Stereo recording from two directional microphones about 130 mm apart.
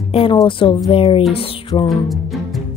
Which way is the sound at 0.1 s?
45° left (ahead or behind).